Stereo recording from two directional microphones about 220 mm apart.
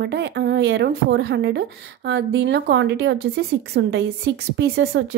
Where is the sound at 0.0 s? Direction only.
50° right (ahead or behind).